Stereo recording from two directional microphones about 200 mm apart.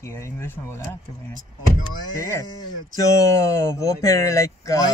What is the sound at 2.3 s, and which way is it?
Speech, 15° left (ahead or behind).